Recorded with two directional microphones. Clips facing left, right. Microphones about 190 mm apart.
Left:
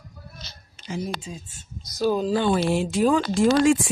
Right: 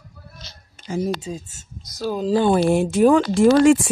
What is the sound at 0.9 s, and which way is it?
Speech, 40° right (ahead or behind).